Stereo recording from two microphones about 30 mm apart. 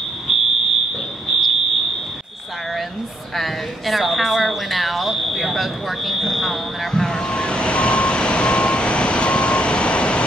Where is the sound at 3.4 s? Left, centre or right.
Centre.